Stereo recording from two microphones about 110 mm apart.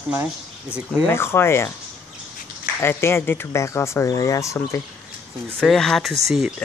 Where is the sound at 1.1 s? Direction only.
20° left (ahead or behind).